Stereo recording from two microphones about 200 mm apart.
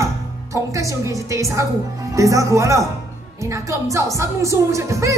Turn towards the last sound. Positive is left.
turn(degrees=-15)  # may be behind; listen again after turning